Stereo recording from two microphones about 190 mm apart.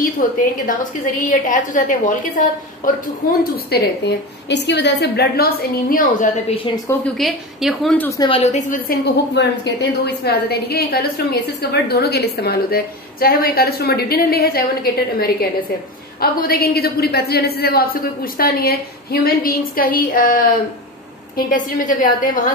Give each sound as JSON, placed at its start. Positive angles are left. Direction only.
{"t": 0.0, "sound": "a woman's voice", "side_deg": 45}
{"t": 6.5, "sound": "a woman's voice", "side_deg": 30}
{"t": 7.2, "sound": "a woman's voice", "side_deg": 0}
{"t": 8.1, "sound": "a woman's voice", "side_deg": 20}
{"t": 8.4, "sound": "a woman's voice", "side_deg": 35}